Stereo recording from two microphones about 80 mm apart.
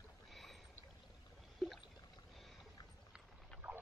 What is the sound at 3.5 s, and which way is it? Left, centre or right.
Vehicle, centre.